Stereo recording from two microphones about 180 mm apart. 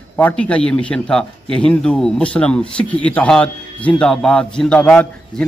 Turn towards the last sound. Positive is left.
turn(degrees=5)  # may be behind; listen again after turning